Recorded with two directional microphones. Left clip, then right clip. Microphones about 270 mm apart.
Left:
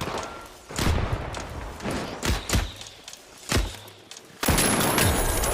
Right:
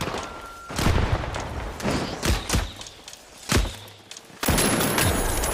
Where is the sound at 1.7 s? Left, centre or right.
Right.